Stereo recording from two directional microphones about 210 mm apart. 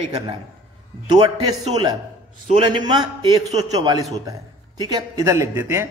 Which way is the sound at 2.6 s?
25° right (ahead or behind).